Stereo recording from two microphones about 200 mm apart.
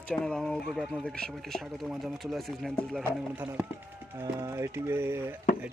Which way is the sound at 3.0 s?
10° right (ahead or behind).